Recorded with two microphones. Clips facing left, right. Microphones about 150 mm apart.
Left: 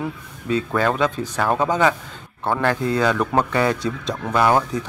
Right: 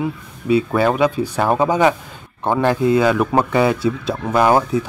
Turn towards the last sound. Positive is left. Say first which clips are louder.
# right 3 dB
turn(degrees=-10)  # may be behind; listen again after turning